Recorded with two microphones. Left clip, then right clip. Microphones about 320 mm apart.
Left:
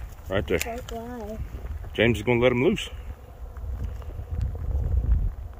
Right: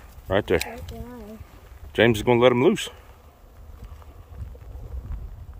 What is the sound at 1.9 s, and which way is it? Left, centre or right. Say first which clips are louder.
Speech: right 4 dB; centre.